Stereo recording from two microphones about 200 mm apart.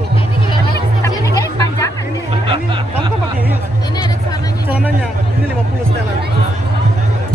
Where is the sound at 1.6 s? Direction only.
15° left (ahead or behind).